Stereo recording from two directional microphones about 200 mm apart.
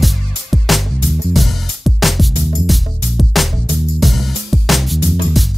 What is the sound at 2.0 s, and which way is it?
Music, centre (ahead or behind).